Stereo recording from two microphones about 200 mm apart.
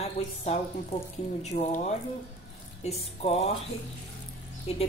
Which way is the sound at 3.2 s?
30° left (ahead or behind).